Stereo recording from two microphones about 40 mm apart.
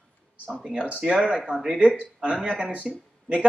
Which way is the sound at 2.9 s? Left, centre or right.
Centre.